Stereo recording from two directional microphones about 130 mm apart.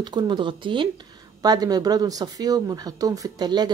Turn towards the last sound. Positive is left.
turn(degrees=-30)  # may be behind; listen again after turning